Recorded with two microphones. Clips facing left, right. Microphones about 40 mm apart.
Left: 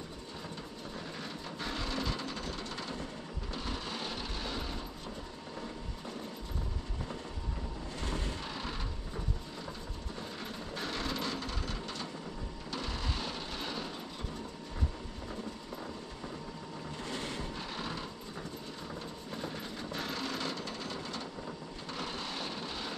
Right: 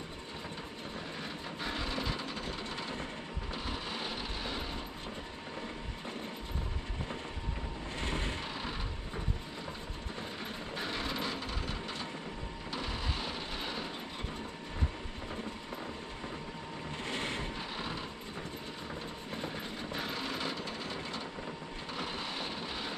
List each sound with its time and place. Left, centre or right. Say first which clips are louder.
1.6 s vehicle: even; centre
8.0 s vehicle: right 2 dB; right
10.8 s vehicle: even; centre
12.7 s a sound: even; centre
17.0 s vehicle: right 2 dB; right
17.6 s vehicle: even; centre
19.3 s a sound: right 1 dB; right